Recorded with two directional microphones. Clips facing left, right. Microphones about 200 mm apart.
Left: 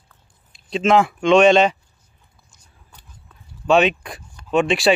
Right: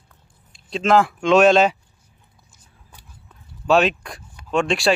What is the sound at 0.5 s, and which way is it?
Speech, centre (ahead or behind).